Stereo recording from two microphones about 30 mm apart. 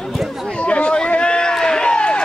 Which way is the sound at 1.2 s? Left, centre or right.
Left.